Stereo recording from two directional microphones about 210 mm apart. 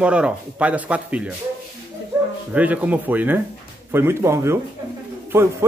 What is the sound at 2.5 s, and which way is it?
A man's voice, 5° right (ahead or behind).